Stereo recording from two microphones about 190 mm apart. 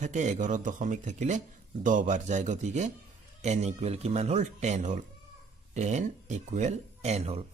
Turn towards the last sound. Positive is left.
turn(degrees=-35)  # may be behind; listen again after turning